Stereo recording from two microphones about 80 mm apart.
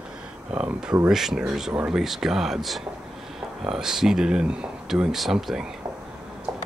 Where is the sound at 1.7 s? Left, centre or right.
Centre.